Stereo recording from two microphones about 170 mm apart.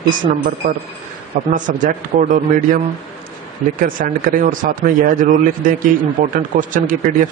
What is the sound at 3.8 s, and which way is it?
Speech, 55° right (ahead or behind).